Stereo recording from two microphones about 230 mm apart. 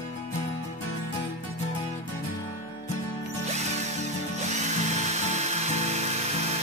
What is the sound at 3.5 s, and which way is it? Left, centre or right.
Drill, right.